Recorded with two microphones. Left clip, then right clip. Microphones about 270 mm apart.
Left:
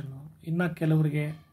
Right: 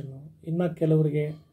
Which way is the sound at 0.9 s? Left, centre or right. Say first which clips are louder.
Right 5 dB; left.